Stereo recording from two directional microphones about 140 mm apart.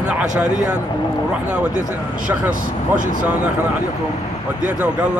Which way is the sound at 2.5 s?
70° right (ahead or behind).